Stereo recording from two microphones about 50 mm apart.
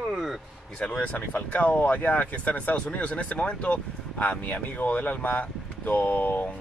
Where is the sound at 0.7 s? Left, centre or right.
Left.